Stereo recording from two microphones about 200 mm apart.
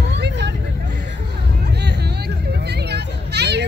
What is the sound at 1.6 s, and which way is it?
Hubbub, 55° right (ahead or behind).